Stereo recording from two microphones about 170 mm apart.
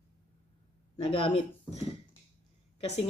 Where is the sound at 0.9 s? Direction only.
35° left (ahead or behind).